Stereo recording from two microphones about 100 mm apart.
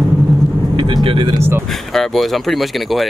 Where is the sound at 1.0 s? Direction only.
60° right (ahead or behind).